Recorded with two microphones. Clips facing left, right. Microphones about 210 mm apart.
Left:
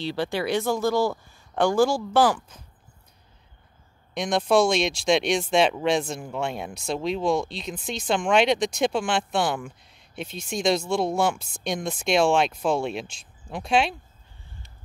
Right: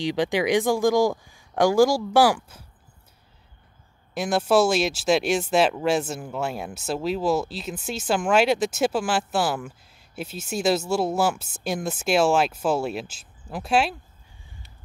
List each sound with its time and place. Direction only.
0.0 s speech: 15° right (ahead or behind)
4.1 s speech: 5° right (ahead or behind)